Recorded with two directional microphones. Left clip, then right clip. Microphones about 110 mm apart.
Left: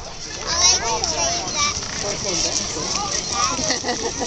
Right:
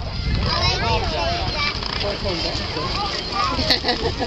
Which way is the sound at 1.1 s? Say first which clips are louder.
Even; 50° left (ahead or behind).